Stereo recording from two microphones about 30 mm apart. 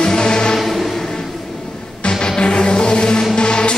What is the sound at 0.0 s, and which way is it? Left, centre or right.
Music, left.